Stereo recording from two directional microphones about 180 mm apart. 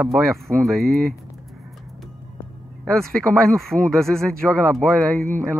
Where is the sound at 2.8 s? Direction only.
5° left (ahead or behind).